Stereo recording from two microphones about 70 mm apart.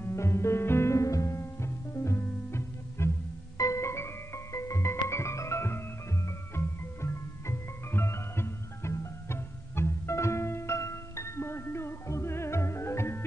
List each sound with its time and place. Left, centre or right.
0.0 s music: left